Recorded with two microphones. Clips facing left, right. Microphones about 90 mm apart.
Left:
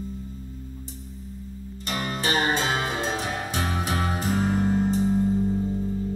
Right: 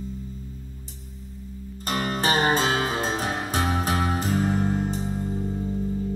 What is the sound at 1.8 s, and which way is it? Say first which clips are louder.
Music: right 3 dB; 40° right (ahead or behind).